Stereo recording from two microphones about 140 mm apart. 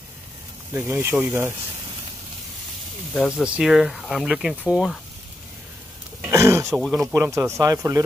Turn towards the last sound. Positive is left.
turn(degrees=-25)  # may be behind; listen again after turning